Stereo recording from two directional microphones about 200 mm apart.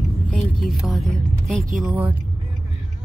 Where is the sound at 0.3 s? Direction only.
Centre (ahead or behind).